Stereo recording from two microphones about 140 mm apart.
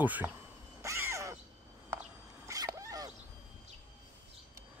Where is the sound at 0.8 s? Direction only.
20° right (ahead or behind).